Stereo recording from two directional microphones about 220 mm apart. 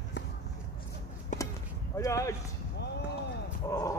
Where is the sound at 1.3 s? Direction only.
35° left (ahead or behind).